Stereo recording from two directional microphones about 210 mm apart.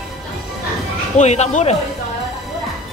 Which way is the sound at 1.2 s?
35° left (ahead or behind).